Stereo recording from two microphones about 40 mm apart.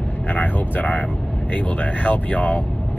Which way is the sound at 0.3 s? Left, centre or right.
Left.